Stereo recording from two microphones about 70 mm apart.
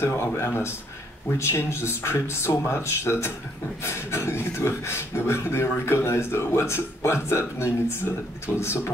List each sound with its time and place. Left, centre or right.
0.0 s speech: left